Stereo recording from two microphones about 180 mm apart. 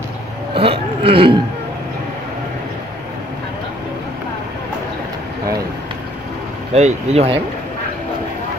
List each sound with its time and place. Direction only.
0.6 s speech: 30° right (ahead or behind)
6.7 s speech: 35° right (ahead or behind)